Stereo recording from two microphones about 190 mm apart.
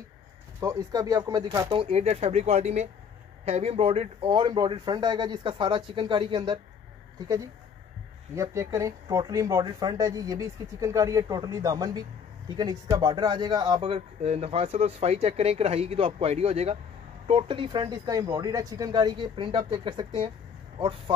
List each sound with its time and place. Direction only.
0.6 s speech: 15° right (ahead or behind)
8.4 s speech: 15° right (ahead or behind)